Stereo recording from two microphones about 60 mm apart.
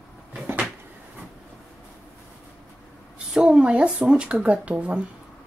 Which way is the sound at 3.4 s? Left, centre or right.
Centre.